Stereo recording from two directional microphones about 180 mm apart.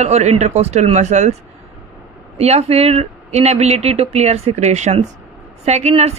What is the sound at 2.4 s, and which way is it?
A woman's voice, 35° right (ahead or behind).